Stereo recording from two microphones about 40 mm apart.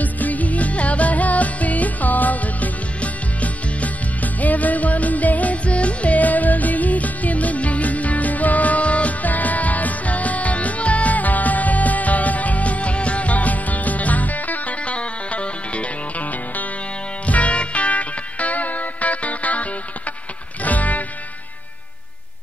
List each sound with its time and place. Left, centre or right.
0.0 s music: left